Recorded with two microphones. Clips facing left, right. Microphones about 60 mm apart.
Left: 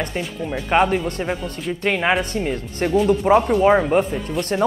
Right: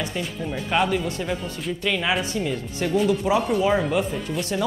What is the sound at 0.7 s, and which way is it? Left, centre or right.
Speech, left.